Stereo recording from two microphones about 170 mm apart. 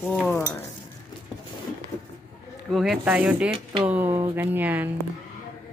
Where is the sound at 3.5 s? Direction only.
35° right (ahead or behind).